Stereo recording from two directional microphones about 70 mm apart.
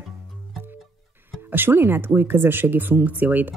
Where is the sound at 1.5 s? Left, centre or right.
Right.